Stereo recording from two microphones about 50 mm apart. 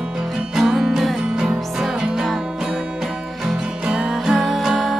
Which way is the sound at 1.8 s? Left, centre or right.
Centre.